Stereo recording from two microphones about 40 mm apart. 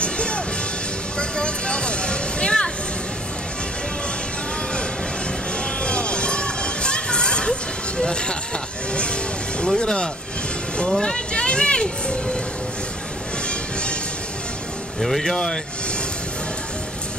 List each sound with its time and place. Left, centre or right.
0.0 s music: left
5.9 s music: left
8.0 s speech: left
8.9 s music: left
9.8 s speech: left
10.8 s music: centre
11.4 s a sound: left
15.0 s speech: centre